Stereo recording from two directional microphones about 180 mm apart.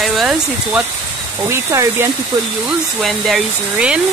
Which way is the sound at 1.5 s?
15° right (ahead or behind).